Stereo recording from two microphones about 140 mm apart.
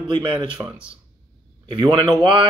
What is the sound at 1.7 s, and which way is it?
Speech, 30° right (ahead or behind).